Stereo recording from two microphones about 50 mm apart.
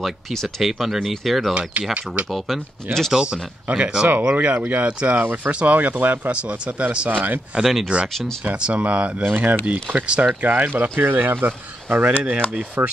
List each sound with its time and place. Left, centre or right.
0.0 s speech: centre
0.6 s speech: centre
1.5 s speech: right
2.2 s speech: centre
3.1 s speech: centre
3.6 s speech: right
7.1 s speech: right
7.6 s speech: centre
8.5 s speech: right
10.4 s speech: right
12.8 s speech: right